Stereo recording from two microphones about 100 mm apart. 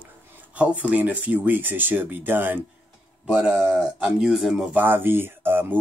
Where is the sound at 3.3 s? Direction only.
10° right (ahead or behind).